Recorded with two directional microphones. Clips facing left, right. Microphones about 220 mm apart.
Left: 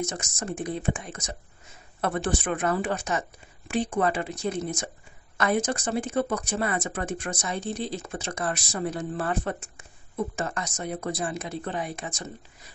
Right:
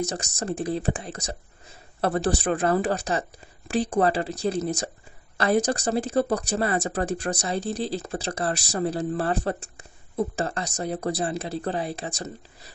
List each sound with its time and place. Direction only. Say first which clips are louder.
0.1 s speech: right 4 dB; 35° right (ahead or behind)